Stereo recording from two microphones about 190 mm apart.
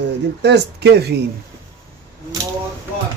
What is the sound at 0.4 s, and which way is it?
Speech, 60° right (ahead or behind).